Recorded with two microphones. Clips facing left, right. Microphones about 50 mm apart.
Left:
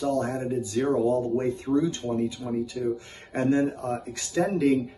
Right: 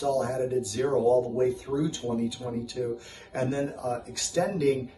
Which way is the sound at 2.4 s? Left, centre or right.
Centre.